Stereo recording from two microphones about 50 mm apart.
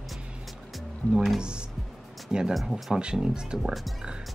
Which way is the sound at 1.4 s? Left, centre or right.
Centre.